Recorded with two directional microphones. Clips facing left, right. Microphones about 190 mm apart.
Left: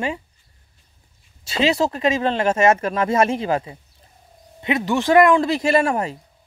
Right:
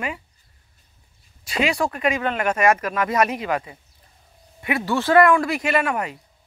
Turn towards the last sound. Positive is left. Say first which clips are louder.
# left 4 dB
turn(degrees=30)  # may be behind; listen again after turning